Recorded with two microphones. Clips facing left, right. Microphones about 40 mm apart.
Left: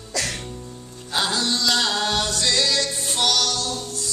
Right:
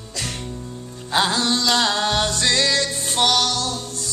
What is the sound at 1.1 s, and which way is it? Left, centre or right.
Music, right.